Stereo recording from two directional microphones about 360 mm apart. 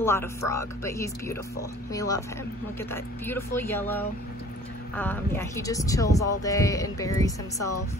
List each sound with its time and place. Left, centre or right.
0.0 s speech: centre